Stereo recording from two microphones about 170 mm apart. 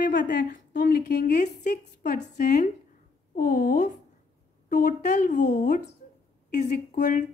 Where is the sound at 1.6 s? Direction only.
45° left (ahead or behind).